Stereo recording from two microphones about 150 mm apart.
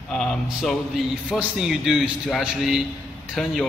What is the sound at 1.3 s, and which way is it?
A man's voice, 5° right (ahead or behind).